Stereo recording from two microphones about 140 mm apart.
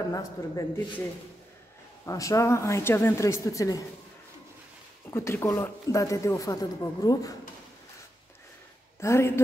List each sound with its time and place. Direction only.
0.1 s speech: 25° left (ahead or behind)
2.0 s speech: 25° left (ahead or behind)
5.1 s speech: 20° left (ahead or behind)
9.0 s speech: 20° left (ahead or behind)